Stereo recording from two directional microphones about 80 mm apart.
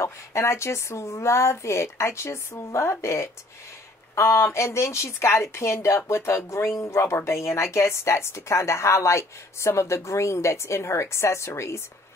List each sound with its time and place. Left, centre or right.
0.0 s a woman's voice: left